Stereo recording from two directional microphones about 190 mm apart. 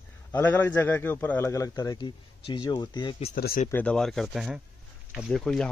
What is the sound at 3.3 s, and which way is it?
Speech, 55° left (ahead or behind).